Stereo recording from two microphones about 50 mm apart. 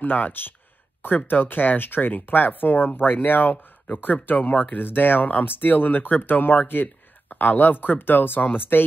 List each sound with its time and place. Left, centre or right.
0.0 s speech: left